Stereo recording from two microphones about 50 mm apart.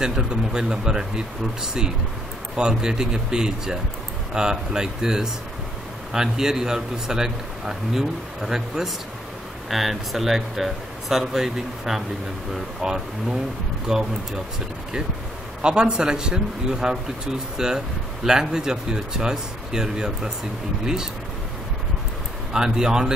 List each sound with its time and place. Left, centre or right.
0.0 s a man's voice: centre
15.6 s a man's voice: centre
22.5 s a man's voice: centre